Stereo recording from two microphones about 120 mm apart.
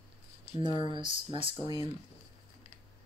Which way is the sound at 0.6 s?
60° left (ahead or behind).